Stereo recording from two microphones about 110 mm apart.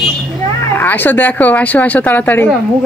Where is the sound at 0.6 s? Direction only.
20° left (ahead or behind).